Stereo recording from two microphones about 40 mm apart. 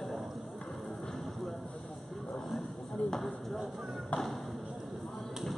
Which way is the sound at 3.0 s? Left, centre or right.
Left.